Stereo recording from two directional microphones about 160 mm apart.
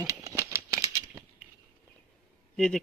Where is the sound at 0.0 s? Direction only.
20° right (ahead or behind).